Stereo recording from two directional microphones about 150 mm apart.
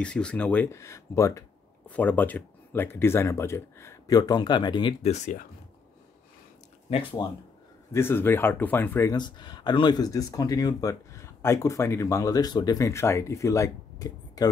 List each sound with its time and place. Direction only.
0.0 s speech: 5° left (ahead or behind)
1.9 s speech: 10° left (ahead or behind); by 4.9 s 30° left (ahead or behind)
5.0 s speech: 50° left (ahead or behind)
6.9 s speech: 35° left (ahead or behind)
7.9 s speech: 15° left (ahead or behind)
9.1 s speech: 30° left (ahead or behind)